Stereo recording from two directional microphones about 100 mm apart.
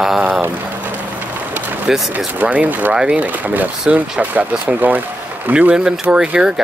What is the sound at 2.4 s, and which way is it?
Speech, 15° right (ahead or behind).